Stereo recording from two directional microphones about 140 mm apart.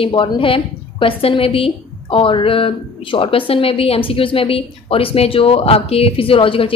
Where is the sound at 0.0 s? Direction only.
35° left (ahead or behind).